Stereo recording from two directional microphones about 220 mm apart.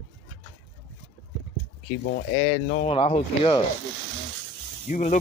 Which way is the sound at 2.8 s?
25° left (ahead or behind).